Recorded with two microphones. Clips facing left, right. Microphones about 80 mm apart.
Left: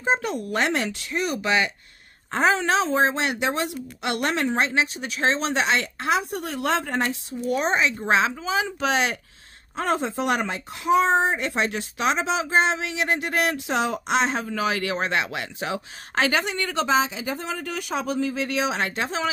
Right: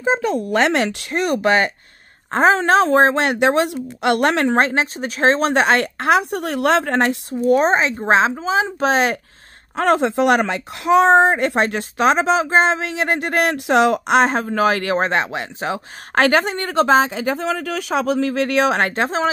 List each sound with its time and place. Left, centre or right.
0.5 s a woman's voice: right
7.2 s speech: right
9.8 s speech: right
16.2 s a woman's voice: right